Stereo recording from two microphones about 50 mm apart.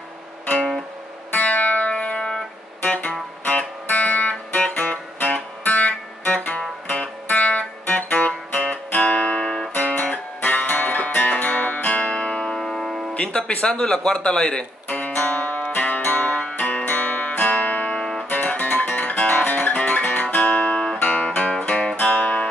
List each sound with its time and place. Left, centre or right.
1.3 s music: left; by 2.4 s centre
2.8 s music: left
9.8 s music: left; by 12.6 s centre
12.6 s music: centre
13.1 s speech: left
14.9 s music: left
17.9 s music: centre
18.3 s guitar: left
21.0 s music: left
22.1 s music: left